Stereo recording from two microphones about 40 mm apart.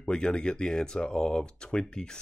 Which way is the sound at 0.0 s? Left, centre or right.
Left.